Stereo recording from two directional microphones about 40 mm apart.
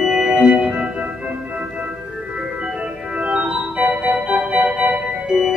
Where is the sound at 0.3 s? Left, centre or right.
Right.